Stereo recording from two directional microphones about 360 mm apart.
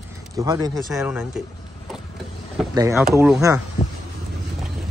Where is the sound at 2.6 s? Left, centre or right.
Centre.